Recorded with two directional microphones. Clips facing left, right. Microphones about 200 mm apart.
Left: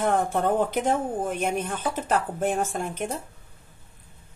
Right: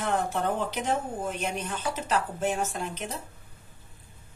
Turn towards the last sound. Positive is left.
turn(degrees=50)  # may be behind; listen again after turning